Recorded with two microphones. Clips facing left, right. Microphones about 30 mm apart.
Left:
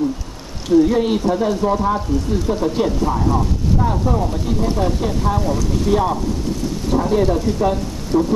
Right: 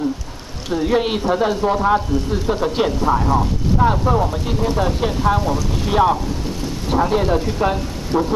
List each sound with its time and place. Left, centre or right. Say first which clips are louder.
0.7 s speech: left 4 dB; right